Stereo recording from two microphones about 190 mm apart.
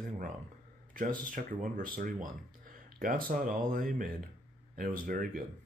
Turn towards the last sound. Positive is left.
turn(degrees=-50)  # may be behind; listen again after turning